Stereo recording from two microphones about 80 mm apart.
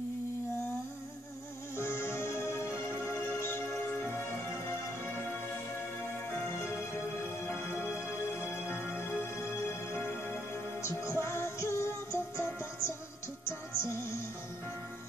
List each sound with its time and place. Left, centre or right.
1.8 s music: left
7.4 s music: left
10.8 s music: left